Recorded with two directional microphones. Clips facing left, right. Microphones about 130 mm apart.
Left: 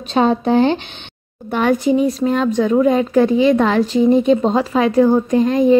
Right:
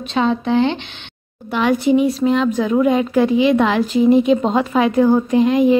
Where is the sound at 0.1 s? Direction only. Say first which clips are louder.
Left 3 dB; 40° left (ahead or behind).